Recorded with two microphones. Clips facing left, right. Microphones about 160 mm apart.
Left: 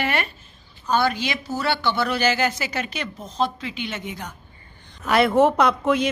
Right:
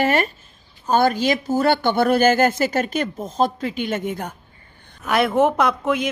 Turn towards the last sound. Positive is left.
turn(degrees=0)  # may be behind; listen again after turning